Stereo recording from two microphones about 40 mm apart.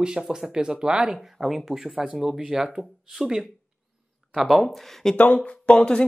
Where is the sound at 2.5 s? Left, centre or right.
Right.